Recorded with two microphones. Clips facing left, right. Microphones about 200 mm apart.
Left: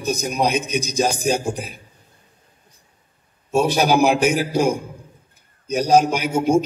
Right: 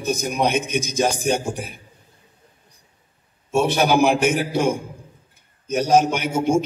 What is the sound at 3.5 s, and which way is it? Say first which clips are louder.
A man's voice: left 1 dB; 35° left (ahead or behind).